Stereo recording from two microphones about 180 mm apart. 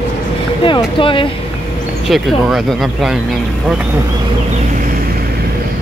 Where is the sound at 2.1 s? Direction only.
Centre (ahead or behind).